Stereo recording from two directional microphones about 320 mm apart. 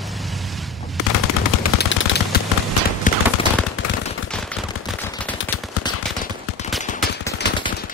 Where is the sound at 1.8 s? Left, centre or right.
Left.